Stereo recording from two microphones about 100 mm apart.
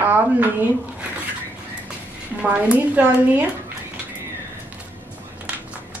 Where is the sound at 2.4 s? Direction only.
15° right (ahead or behind).